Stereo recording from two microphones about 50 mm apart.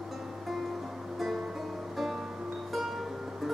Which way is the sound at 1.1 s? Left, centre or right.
Centre.